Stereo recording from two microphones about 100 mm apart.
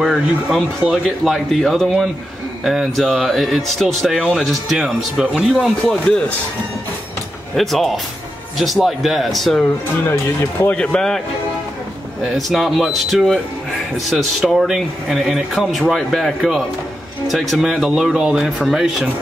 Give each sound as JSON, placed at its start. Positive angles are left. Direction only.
{"t": 0.0, "sound": "speech", "side_deg": -5}
{"t": 6.0, "sound": "speech", "side_deg": 10}
{"t": 7.5, "sound": "speech", "side_deg": 0}
{"t": 10.0, "sound": "speech", "side_deg": 25}
{"t": 10.8, "sound": "speech", "side_deg": 10}
{"t": 12.4, "sound": "speech", "side_deg": 0}